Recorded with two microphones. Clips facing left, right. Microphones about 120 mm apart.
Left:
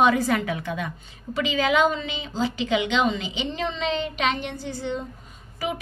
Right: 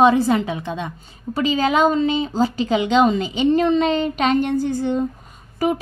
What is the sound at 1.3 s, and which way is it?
A woman's voice, 40° right (ahead or behind).